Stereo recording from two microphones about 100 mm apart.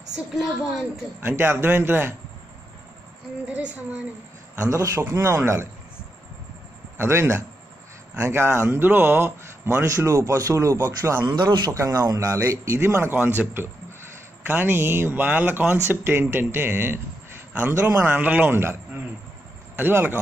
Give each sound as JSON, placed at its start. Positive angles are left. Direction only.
{"t": 0.1, "sound": "a woman's voice", "side_deg": -5}
{"t": 1.2, "sound": "speech", "side_deg": -20}
{"t": 3.4, "sound": "speech", "side_deg": -15}
{"t": 4.6, "sound": "speech", "side_deg": -30}
{"t": 7.0, "sound": "speech", "side_deg": -25}
{"t": 9.8, "sound": "a man's voice", "side_deg": -30}
{"t": 11.7, "sound": "speech", "side_deg": -35}
{"t": 17.5, "sound": "a sound", "side_deg": -15}
{"t": 17.7, "sound": "speech", "side_deg": -25}
{"t": 19.8, "sound": "speech", "side_deg": -20}